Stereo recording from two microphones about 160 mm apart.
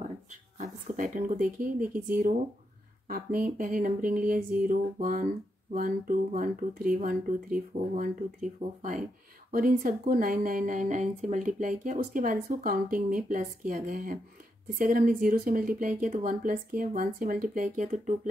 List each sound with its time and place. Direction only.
0.3 s speech: 50° right (ahead or behind)
9.5 s speech: 60° right (ahead or behind)